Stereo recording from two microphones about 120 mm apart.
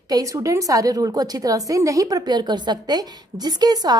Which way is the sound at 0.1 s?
30° right (ahead or behind).